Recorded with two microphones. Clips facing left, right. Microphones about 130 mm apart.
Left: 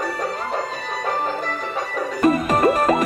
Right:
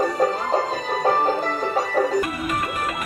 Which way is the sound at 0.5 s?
35° right (ahead or behind).